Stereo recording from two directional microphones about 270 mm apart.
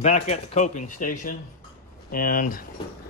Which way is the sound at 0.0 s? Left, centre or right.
Left.